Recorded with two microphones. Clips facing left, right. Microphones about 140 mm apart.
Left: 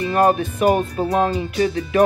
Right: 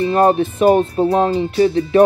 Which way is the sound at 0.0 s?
30° right (ahead or behind).